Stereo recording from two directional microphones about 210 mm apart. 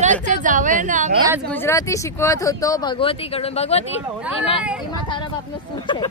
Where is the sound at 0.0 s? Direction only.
35° right (ahead or behind).